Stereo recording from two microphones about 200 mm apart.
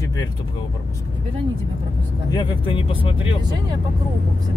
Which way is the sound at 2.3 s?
25° left (ahead or behind).